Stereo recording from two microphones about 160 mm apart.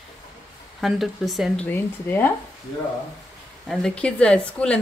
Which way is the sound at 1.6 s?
10° left (ahead or behind).